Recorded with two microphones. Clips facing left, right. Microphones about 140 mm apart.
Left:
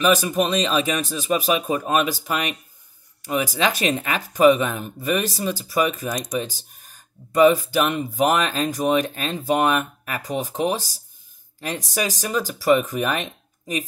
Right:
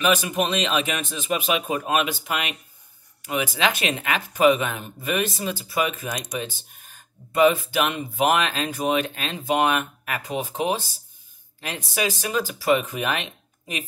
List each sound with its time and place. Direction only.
0.0 s speech: 40° left (ahead or behind)
12.0 s speech: 40° left (ahead or behind)